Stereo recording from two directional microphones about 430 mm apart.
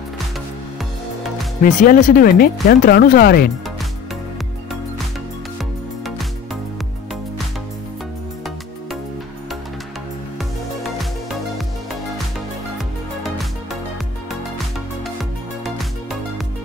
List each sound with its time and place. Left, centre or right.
1.6 s speech: centre
6.0 s music: centre
10.8 s music: centre
12.7 s music: centre
15.6 s music: centre